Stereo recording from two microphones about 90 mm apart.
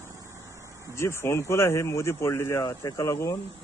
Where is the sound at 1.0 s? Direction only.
30° left (ahead or behind).